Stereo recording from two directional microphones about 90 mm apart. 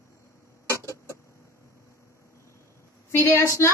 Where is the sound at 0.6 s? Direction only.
35° right (ahead or behind).